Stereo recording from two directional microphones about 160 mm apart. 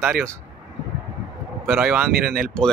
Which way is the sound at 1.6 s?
15° right (ahead or behind).